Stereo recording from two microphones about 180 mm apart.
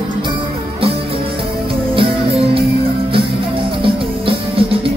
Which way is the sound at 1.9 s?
30° right (ahead or behind).